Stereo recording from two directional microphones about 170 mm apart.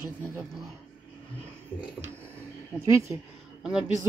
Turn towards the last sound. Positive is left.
turn(degrees=-5)  # may be behind; listen again after turning